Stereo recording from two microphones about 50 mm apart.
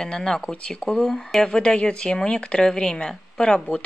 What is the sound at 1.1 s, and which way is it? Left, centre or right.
Speech, centre.